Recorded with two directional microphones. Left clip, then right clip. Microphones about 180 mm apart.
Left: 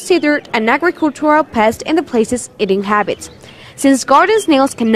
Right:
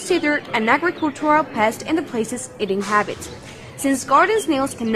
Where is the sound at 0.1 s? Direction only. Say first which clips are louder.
Left 6 dB; 35° left (ahead or behind).